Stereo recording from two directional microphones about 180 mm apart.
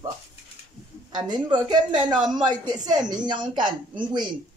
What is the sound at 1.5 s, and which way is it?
Speech, 25° right (ahead or behind).